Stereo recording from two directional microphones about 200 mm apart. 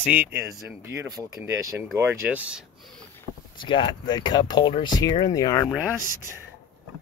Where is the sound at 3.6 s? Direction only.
25° left (ahead or behind).